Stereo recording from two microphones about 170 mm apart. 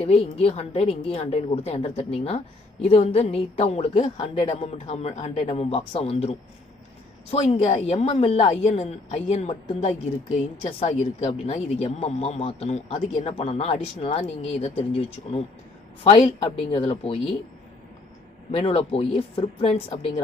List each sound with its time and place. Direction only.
0.0 s a woman's voice: 35° left (ahead or behind)
18.5 s a woman's voice: 35° left (ahead or behind)